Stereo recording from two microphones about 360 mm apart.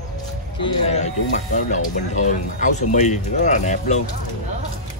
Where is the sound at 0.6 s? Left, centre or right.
Centre.